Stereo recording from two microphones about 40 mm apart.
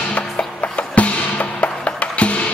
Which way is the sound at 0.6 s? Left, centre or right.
Left.